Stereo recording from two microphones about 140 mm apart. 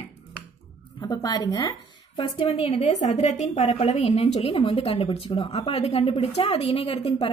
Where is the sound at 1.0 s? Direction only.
30° left (ahead or behind).